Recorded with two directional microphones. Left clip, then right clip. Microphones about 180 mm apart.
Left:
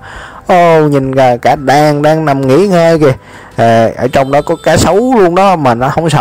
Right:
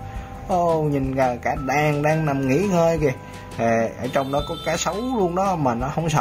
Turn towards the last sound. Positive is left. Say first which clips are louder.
# left 13 dB
turn(degrees=45)  # may be behind; listen again after turning